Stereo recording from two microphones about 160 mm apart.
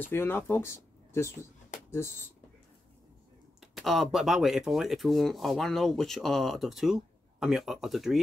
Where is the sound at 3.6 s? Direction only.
Centre (ahead or behind).